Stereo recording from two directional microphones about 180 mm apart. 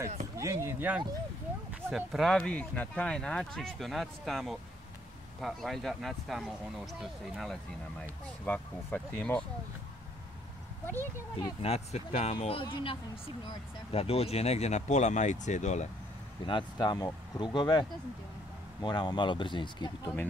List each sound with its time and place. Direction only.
0.4 s speech: 15° right (ahead or behind)
1.9 s speech: centre (ahead or behind)
11.4 s speech: 35° left (ahead or behind)
16.4 s speech: 25° left (ahead or behind)